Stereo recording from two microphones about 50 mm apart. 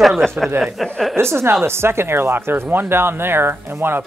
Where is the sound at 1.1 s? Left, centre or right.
Right.